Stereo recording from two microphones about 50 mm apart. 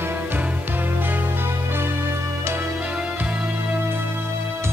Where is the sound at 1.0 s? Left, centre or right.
Right.